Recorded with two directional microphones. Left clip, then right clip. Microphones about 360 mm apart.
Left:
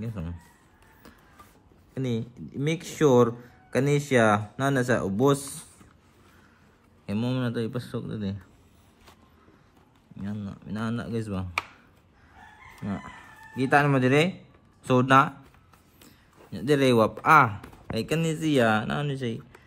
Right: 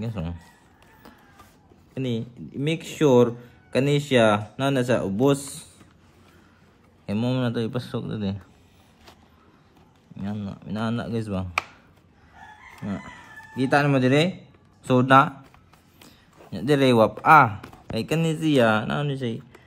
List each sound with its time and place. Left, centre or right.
0.0 s speech: centre
2.0 s speech: centre
7.1 s speech: centre
10.1 s speech: centre
12.7 s speech: centre